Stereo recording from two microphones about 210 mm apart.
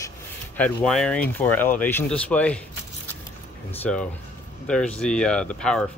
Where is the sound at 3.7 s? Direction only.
5° left (ahead or behind).